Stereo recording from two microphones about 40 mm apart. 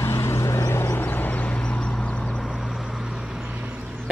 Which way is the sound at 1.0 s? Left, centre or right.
Left.